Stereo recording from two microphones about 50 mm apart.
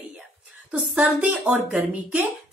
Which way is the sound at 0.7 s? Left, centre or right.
Right.